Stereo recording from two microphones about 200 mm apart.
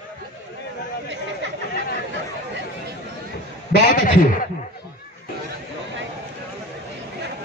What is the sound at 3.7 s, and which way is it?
Speech, 45° left (ahead or behind).